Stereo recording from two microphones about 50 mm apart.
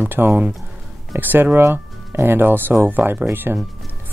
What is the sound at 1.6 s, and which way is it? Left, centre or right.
Speech, right.